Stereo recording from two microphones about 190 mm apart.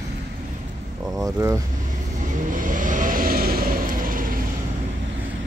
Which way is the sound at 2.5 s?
45° right (ahead or behind).